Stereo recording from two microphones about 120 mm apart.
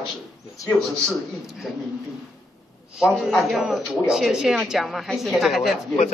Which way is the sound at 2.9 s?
5° right (ahead or behind).